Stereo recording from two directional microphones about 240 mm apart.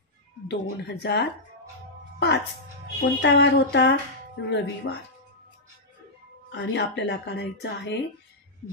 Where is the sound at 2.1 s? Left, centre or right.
Left.